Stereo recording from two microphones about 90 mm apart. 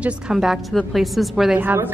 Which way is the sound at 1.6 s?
20° right (ahead or behind).